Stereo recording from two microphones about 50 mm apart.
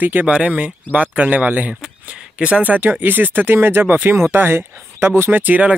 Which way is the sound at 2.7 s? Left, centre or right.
Right.